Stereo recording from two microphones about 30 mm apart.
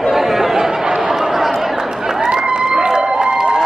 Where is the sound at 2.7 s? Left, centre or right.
Right.